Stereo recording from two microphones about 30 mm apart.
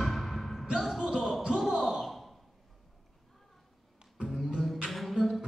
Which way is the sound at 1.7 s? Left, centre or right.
Centre.